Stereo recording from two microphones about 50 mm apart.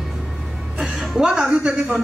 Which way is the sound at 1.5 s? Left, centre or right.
Centre.